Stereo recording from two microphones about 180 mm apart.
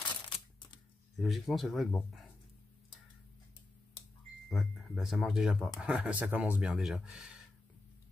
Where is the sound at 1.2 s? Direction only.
Centre (ahead or behind).